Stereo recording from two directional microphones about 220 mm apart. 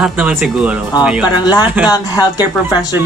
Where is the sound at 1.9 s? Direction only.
15° left (ahead or behind).